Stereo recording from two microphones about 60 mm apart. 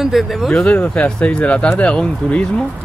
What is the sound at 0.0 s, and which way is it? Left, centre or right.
Speech, centre.